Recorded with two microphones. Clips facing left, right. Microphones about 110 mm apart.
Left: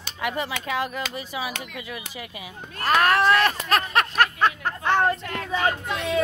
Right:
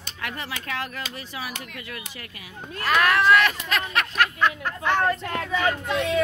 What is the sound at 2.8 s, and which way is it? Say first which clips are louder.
Speech: left 1 dB; 35° left (ahead or behind).